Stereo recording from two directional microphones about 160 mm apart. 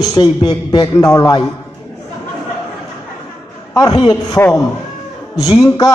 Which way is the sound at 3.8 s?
30° left (ahead or behind).